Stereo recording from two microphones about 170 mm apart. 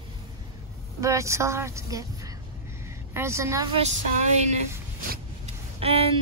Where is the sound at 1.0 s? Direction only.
15° right (ahead or behind).